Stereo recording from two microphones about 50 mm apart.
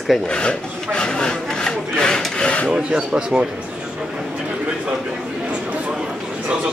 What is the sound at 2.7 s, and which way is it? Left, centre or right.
Speech, centre.